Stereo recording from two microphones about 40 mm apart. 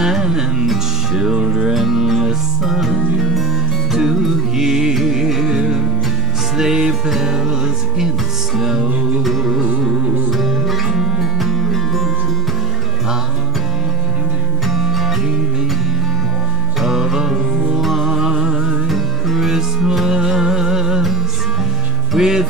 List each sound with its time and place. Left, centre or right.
0.0 s music: centre
3.9 s music: centre
8.5 s music: centre
9.2 s music: centre
14.7 s music: centre
16.8 s music: centre
18.9 s music: centre
22.1 s music: centre